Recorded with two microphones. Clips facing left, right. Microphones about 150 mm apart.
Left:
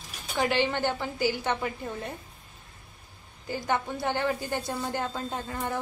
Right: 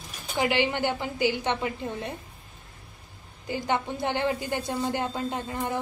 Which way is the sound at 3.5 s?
20° right (ahead or behind).